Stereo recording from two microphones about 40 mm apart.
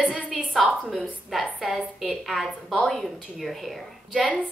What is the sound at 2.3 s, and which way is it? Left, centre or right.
Speech, centre.